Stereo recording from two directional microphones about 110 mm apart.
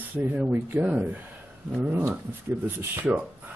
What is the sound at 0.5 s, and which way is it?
Speech, 15° right (ahead or behind).